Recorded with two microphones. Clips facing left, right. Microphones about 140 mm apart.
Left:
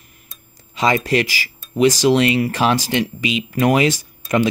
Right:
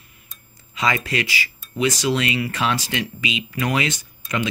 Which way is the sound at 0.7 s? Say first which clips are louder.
Left 6 dB; 35° left (ahead or behind).